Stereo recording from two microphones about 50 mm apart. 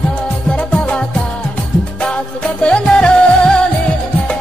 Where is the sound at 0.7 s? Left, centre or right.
Left.